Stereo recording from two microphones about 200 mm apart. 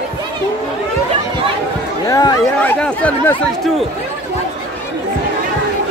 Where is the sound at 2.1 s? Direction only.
20° left (ahead or behind).